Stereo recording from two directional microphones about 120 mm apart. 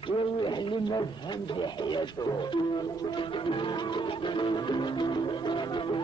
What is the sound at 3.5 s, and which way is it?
A man's voice, 40° left (ahead or behind).